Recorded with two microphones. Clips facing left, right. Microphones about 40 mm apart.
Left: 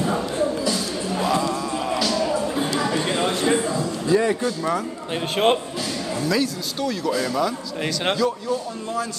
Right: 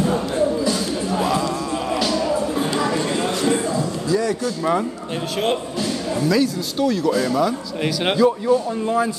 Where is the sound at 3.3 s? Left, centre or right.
Left.